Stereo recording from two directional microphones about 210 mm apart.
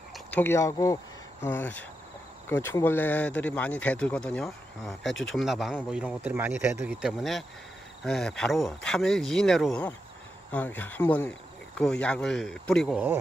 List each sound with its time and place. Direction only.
0.1 s a man's voice: 10° left (ahead or behind)